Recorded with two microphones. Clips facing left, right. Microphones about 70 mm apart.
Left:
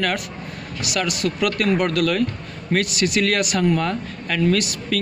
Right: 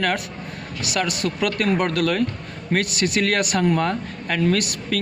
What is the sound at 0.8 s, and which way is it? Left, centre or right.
A man's voice, right.